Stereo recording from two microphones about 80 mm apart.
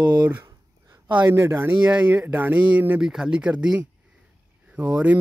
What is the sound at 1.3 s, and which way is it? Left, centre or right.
Speech, right.